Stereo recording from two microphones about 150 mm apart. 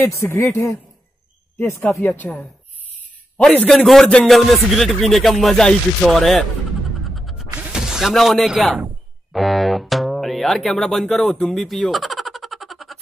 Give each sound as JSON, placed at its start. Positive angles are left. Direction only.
{"t": 0.0, "sound": "speech", "side_deg": 15}
{"t": 2.2, "sound": "speech", "side_deg": 15}
{"t": 3.3, "sound": "a man's voice", "side_deg": 5}
{"t": 7.2, "sound": "music", "side_deg": 0}
{"t": 7.7, "sound": "speech", "side_deg": 0}